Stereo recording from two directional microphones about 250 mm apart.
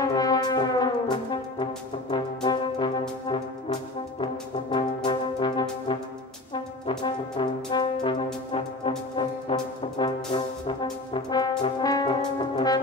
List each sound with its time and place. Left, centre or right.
0.0 s brass instrument: centre
8.5 s music: left
9.1 s brass instrument: centre